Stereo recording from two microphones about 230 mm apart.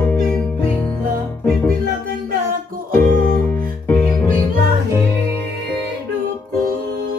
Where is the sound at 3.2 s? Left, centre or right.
Centre.